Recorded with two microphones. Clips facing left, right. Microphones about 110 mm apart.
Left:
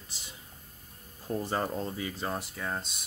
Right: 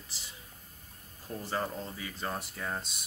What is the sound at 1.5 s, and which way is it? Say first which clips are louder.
Speech: even; 20° left (ahead or behind).